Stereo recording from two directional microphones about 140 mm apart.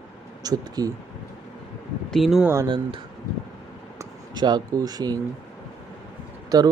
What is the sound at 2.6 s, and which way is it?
Speech, 35° right (ahead or behind).